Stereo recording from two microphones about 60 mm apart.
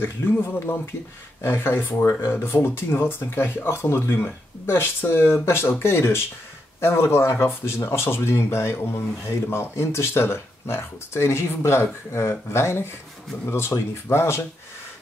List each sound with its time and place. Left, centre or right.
0.0 s speech: left